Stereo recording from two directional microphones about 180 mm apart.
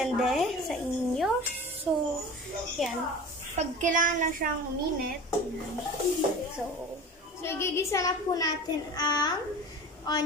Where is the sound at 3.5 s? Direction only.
45° right (ahead or behind).